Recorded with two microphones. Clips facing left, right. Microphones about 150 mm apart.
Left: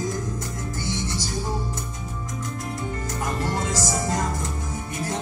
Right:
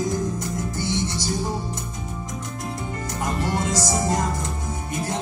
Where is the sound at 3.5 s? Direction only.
20° right (ahead or behind).